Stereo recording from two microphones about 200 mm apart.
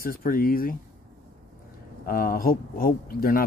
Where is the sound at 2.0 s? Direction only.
45° left (ahead or behind).